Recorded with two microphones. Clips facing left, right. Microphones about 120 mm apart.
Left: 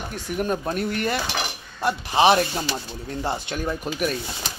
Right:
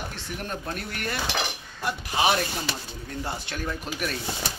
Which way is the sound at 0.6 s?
25° left (ahead or behind).